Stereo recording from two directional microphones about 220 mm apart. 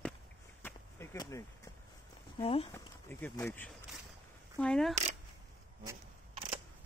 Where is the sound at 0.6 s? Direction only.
10° left (ahead or behind).